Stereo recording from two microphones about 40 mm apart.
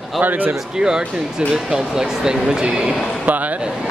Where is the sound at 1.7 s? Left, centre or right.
Centre.